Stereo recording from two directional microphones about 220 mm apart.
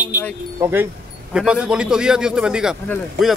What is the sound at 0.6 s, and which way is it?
Speech, 10° right (ahead or behind).